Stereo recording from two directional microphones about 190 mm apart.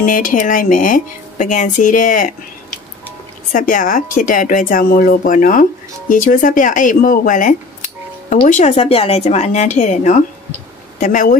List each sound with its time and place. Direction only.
0.0 s a woman's voice: 45° left (ahead or behind)